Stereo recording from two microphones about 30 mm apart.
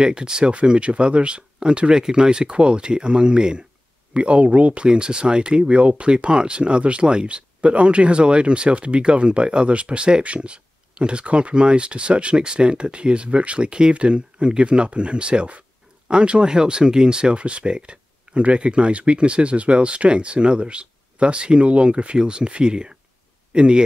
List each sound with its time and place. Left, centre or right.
0.0 s speech: right
0.5 s speech: right
4.1 s speech: right
4.8 s speech: right
5.7 s speech: right
17.3 s a man's voice: right